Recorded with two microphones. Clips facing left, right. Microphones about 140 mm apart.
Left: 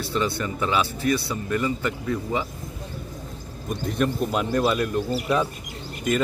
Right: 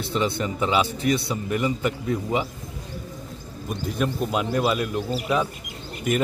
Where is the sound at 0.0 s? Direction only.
20° right (ahead or behind).